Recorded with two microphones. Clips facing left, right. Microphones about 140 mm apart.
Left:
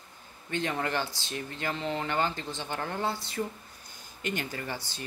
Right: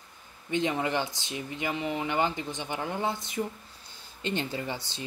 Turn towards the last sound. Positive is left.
turn(degrees=-20)  # may be behind; listen again after turning